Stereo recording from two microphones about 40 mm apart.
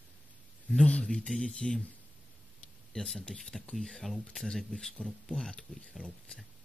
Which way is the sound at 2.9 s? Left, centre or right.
Centre.